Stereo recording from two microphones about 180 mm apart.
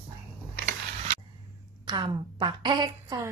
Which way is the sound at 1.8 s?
25° right (ahead or behind).